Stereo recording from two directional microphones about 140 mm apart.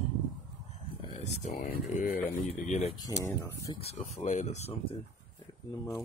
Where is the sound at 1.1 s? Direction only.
55° left (ahead or behind).